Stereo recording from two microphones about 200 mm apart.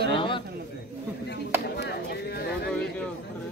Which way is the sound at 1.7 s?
50° left (ahead or behind).